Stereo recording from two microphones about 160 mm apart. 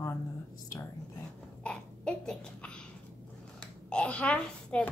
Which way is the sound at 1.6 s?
5° left (ahead or behind).